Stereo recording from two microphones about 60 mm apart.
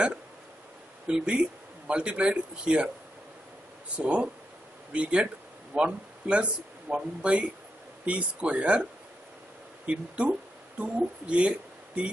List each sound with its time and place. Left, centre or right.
1.0 s speech: centre
3.9 s speech: centre
9.8 s speech: centre